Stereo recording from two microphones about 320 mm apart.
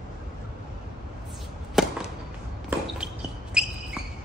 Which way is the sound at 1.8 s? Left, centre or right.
Centre.